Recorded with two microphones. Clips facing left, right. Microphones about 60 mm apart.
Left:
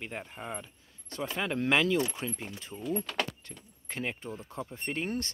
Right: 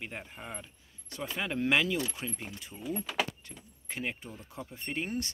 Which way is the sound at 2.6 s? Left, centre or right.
Centre.